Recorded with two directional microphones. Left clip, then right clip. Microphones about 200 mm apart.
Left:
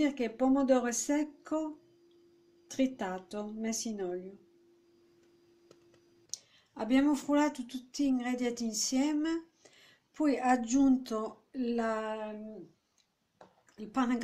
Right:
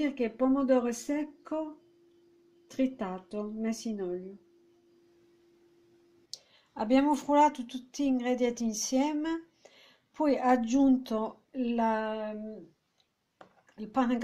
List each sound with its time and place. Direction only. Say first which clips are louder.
0.0 s speech: right 1 dB; 35° right (ahead or behind)
2.7 s speech: right 1 dB; 35° right (ahead or behind)
6.3 s speech: right 4 dB; 40° right (ahead or behind)
13.7 s speech: right 3 dB; 40° right (ahead or behind)